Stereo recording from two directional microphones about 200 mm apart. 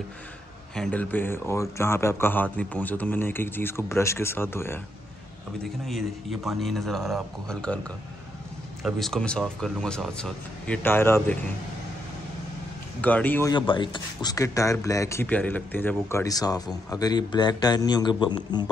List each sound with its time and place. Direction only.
0.7 s speech: 5° left (ahead or behind)
5.6 s speech: centre (ahead or behind)
8.8 s speech: centre (ahead or behind)
13.0 s speech: 10° left (ahead or behind)
13.5 s a man's voice: 25° left (ahead or behind)